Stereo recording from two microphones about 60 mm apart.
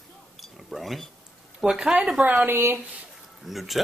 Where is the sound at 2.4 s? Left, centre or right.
Right.